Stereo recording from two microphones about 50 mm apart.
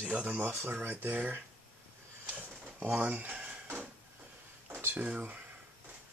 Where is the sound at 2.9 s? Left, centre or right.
Right.